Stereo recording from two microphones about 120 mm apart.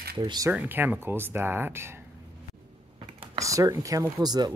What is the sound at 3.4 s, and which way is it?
Speech, 30° right (ahead or behind).